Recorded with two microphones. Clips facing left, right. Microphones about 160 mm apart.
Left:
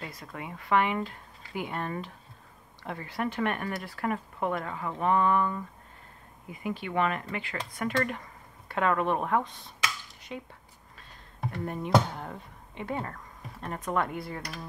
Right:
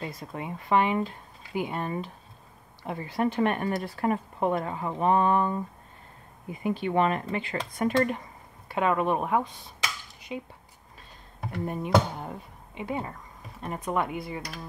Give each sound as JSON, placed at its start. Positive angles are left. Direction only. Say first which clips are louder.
{"t": 0.0, "sound": "speech", "louder": "right 4 dB", "side_deg": -25}
{"t": 11.6, "sound": "speech", "louder": "right 1 dB", "side_deg": -15}
{"t": 14.1, "sound": "speech", "louder": "right 2 dB", "side_deg": -5}